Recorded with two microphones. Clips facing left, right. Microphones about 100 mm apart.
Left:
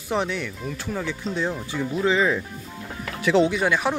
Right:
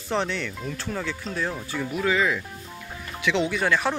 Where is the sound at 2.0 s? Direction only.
25° left (ahead or behind).